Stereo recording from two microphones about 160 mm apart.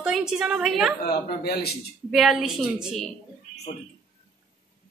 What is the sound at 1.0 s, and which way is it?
Speech, 75° left (ahead or behind).